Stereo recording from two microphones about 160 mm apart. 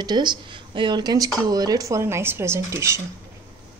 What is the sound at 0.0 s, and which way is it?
Speech, 25° right (ahead or behind).